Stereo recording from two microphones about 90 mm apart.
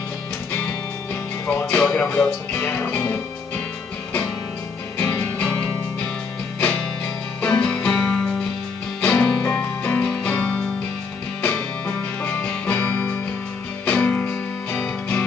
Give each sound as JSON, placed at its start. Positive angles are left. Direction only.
{"t": 0.5, "sound": "music", "side_deg": 20}
{"t": 1.8, "sound": "speech", "side_deg": 10}
{"t": 2.5, "sound": "music", "side_deg": 25}
{"t": 4.9, "sound": "music", "side_deg": 20}